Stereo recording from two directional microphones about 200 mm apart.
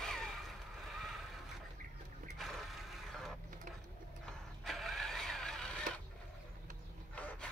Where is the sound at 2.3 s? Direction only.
Centre (ahead or behind).